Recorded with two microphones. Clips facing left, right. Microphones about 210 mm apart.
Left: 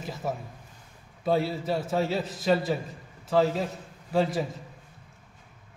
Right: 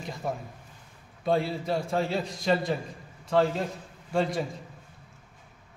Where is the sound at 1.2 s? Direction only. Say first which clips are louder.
Left 1 dB; 5° left (ahead or behind).